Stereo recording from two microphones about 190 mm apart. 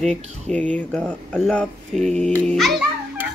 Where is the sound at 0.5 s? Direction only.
5° left (ahead or behind).